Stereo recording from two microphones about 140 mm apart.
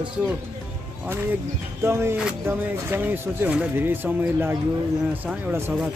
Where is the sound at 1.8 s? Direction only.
20° right (ahead or behind).